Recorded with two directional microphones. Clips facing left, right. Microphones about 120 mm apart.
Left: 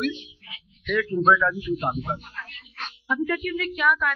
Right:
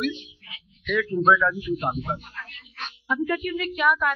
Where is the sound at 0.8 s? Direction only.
5° right (ahead or behind).